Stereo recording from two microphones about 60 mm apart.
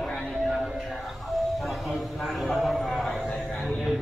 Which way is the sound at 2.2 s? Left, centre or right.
Centre.